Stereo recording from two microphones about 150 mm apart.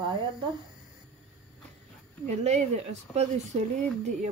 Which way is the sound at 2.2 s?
50° right (ahead or behind).